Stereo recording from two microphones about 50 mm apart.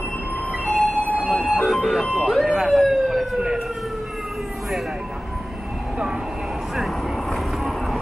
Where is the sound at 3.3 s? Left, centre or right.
Centre.